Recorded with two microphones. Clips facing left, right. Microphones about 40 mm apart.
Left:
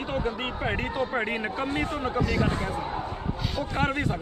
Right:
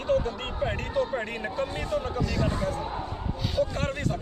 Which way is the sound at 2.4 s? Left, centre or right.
Left.